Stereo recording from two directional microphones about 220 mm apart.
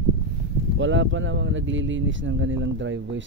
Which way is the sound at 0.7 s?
60° right (ahead or behind).